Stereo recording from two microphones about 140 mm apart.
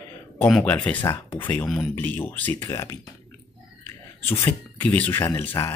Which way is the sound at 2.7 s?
25° left (ahead or behind).